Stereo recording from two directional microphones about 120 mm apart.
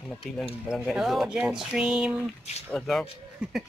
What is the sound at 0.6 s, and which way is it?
Speech, 5° right (ahead or behind).